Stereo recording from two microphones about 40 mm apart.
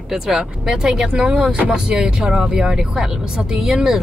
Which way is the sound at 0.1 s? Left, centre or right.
Centre.